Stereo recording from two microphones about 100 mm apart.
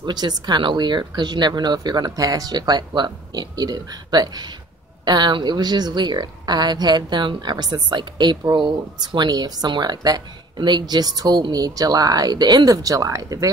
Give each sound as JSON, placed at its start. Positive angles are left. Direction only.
{"t": 0.0, "sound": "speech", "side_deg": -45}